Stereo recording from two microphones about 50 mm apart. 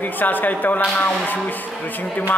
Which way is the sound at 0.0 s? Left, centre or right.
Left.